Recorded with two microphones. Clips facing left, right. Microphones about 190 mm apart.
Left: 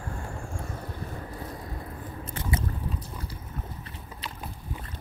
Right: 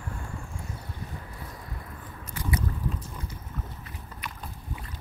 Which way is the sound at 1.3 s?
30° left (ahead or behind).